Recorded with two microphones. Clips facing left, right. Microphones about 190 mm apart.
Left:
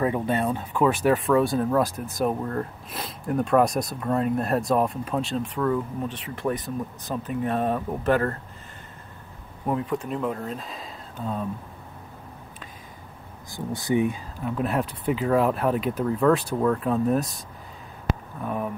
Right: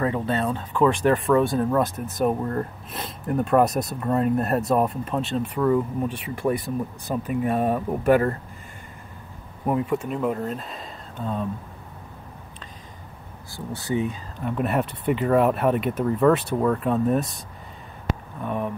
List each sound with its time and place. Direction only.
0.0 s speech: 15° left (ahead or behind); by 8.4 s 10° right (ahead or behind)
9.7 s speech: 5° right (ahead or behind)
13.5 s speech: 15° left (ahead or behind)
14.4 s speech: centre (ahead or behind)
18.4 s speech: centre (ahead or behind)